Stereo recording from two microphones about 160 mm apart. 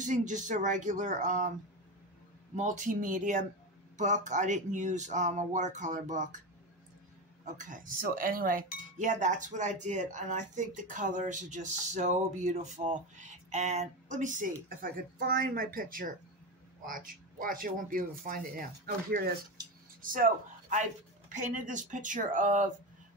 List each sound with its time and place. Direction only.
0.0 s speech: 50° right (ahead or behind)
2.5 s speech: 50° right (ahead or behind)
7.4 s a man's voice: 50° right (ahead or behind)